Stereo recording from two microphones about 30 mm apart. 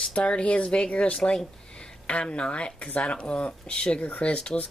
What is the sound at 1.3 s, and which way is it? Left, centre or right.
Speech, left.